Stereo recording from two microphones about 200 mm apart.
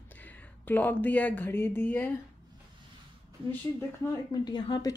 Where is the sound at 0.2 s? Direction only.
10° left (ahead or behind).